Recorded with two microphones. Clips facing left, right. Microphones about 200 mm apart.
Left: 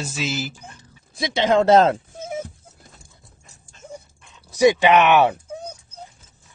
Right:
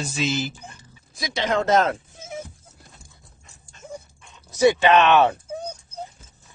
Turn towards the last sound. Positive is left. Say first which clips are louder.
# left 1 dB
turn(degrees=10)  # may be behind; listen again after turning